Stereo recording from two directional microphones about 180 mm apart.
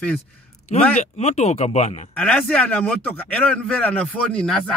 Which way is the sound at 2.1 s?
5° left (ahead or behind).